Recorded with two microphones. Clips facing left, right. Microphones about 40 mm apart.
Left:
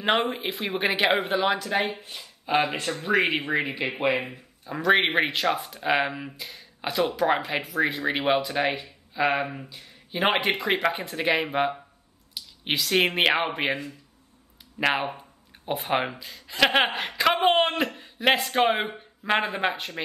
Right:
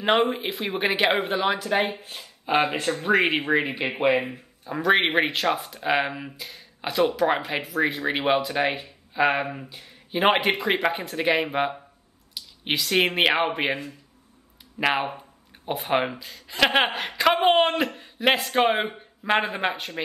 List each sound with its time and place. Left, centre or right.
0.0 s speech: centre
2.5 s speech: centre
14.8 s speech: centre